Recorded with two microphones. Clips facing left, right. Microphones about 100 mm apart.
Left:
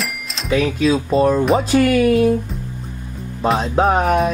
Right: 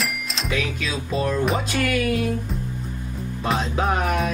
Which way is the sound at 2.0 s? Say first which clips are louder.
Left 9 dB; 5° left (ahead or behind).